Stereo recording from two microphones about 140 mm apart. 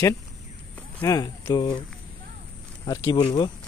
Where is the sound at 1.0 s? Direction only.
25° left (ahead or behind).